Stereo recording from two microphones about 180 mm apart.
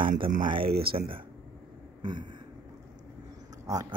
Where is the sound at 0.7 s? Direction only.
60° right (ahead or behind).